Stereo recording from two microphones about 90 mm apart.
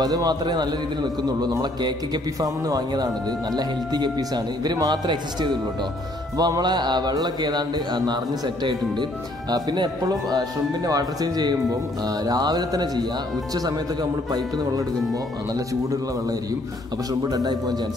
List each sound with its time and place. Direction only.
0.0 s speech: 45° right (ahead or behind)
9.5 s speech: 50° right (ahead or behind)
17.3 s speech: 45° right (ahead or behind)